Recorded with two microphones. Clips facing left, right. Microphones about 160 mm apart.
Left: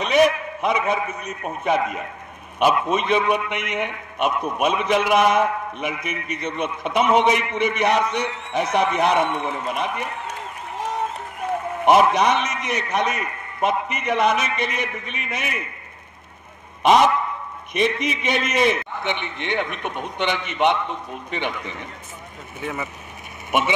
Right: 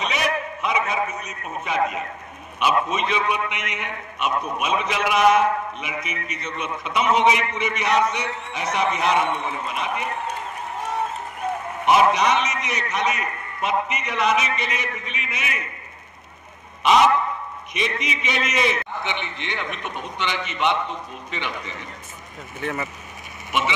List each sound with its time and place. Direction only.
0.0 s a man's voice: 50° left (ahead or behind)
11.8 s a man's voice: 55° left (ahead or behind)
16.8 s a man's voice: 50° left (ahead or behind)
22.6 s speech: 10° left (ahead or behind)